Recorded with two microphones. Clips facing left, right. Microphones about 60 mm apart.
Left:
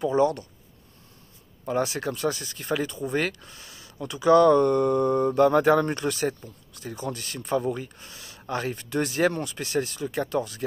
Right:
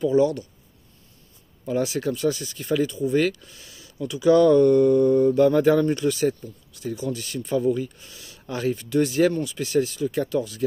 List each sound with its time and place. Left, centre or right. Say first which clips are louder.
0.0 s speech: right 3 dB; left
2.0 s speech: right 4 dB; left
10.0 s speech: right 3 dB; left